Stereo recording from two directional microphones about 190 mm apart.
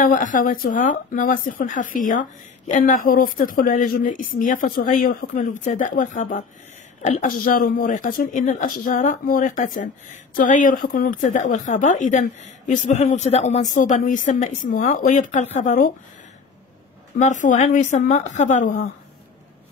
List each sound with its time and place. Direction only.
0.0 s speech: 45° left (ahead or behind)
17.2 s speech: 40° left (ahead or behind)